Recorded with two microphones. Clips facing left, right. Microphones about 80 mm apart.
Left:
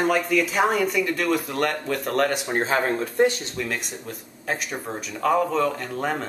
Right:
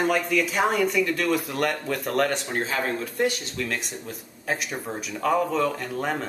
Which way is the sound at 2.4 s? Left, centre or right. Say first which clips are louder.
Left 4 dB; left.